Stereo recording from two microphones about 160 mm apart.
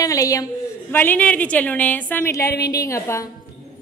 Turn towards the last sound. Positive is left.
turn(degrees=20)  # may be behind; listen again after turning